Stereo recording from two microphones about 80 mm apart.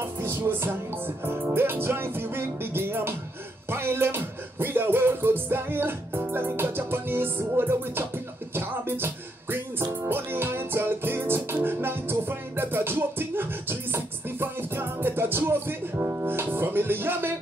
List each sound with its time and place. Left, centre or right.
0.0 s music: right